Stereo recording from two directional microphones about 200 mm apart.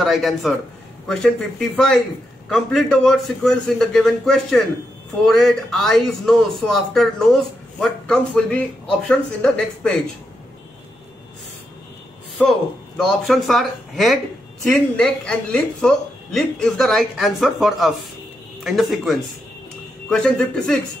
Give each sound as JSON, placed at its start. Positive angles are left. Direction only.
{"t": 0.0, "sound": "a man's voice", "side_deg": 0}
{"t": 12.4, "sound": "a man's voice", "side_deg": 0}